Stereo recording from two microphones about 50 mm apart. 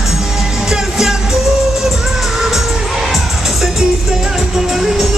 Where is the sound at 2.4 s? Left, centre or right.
Centre.